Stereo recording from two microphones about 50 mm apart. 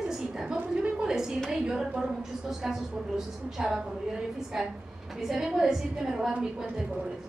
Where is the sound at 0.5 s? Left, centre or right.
Right.